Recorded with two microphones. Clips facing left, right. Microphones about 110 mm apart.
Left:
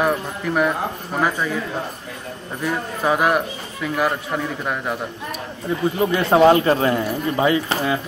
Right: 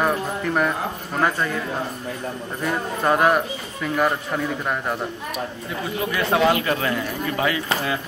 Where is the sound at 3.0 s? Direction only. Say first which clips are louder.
Even; 5° left (ahead or behind).